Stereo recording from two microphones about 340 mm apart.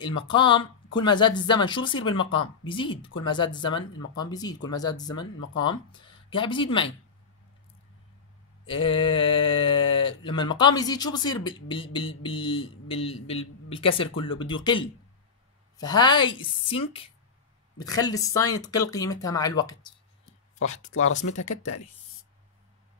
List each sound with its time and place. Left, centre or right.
0.0 s speech: centre
8.6 s speech: centre
21.2 s speech: left